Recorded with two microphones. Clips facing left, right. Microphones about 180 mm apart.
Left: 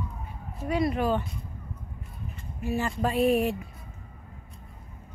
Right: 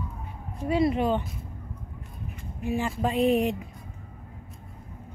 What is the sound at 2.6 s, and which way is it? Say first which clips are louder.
Speech: right 1 dB; 15° right (ahead or behind).